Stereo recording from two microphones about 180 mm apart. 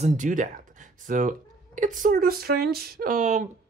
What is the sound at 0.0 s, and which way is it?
Speech, 45° right (ahead or behind).